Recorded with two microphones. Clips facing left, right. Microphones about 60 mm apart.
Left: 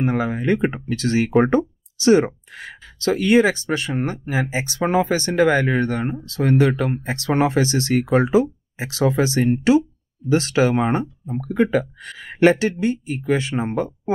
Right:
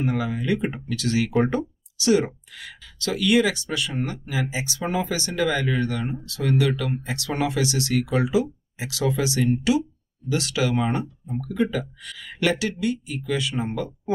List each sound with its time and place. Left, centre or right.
0.0 s speech: left